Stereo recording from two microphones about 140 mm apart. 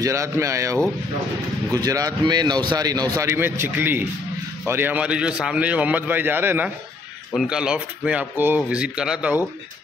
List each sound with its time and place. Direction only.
0.0 s a man's voice: 20° right (ahead or behind)